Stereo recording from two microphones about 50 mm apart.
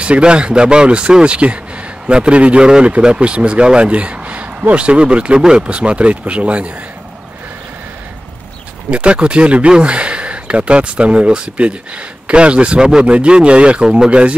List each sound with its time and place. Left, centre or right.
0.0 s speech: right
8.9 s speech: right